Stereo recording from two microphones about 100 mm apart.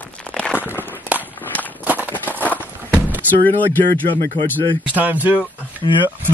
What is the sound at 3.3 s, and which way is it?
Speech, 15° left (ahead or behind).